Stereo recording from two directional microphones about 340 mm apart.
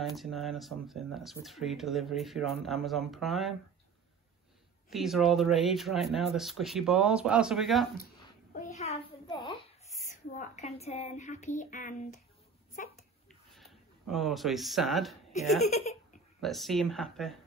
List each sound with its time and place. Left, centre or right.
0.0 s speech: centre
4.8 s speech: centre
8.5 s a sound: centre
10.3 s speech: left
13.5 s speech: centre
15.6 s speech: centre
16.3 s speech: centre